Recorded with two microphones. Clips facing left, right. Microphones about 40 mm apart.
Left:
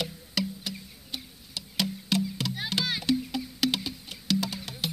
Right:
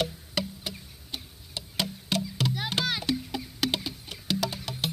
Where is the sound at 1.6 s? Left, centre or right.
Right.